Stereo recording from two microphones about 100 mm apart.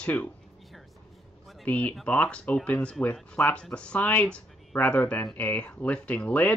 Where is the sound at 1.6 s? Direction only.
15° left (ahead or behind).